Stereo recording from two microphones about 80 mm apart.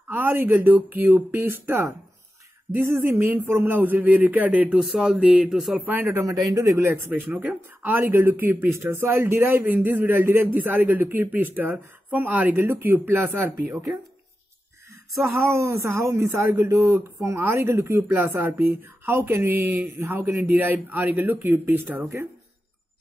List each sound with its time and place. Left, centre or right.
0.1 s speech: right
4.7 s speech: centre
5.8 s speech: right
6.2 s speech: right
7.2 s speech: right
15.4 s speech: right